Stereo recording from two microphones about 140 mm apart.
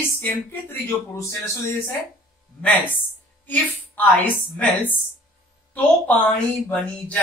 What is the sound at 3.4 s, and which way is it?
Speech, 10° left (ahead or behind).